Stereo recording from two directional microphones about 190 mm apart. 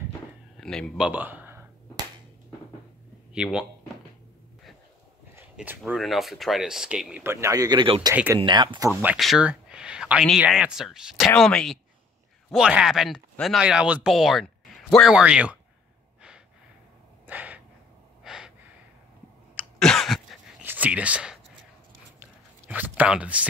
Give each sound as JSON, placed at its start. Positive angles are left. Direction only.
{"t": 0.6, "sound": "speech", "side_deg": 5}
{"t": 3.3, "sound": "speech", "side_deg": -5}
{"t": 5.3, "sound": "speech", "side_deg": -5}
{"t": 8.1, "sound": "speech", "side_deg": -10}
{"t": 8.4, "sound": "speech", "side_deg": -25}
{"t": 9.0, "sound": "speech", "side_deg": 0}
{"t": 17.3, "sound": "gasp", "side_deg": -10}
{"t": 19.8, "sound": "a sound", "side_deg": 0}
{"t": 20.6, "sound": "speech", "side_deg": -10}
{"t": 22.2, "sound": "a sound", "side_deg": -10}